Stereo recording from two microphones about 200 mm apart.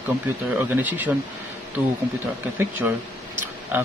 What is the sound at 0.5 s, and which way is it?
Speech, 10° right (ahead or behind).